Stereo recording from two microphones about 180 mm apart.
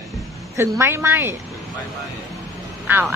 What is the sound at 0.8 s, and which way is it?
Speech, 15° right (ahead or behind).